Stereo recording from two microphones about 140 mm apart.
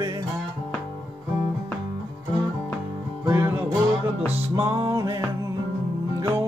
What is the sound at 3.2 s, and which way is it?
Music, 20° right (ahead or behind).